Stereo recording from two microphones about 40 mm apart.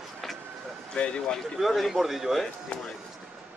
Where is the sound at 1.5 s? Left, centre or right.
Centre.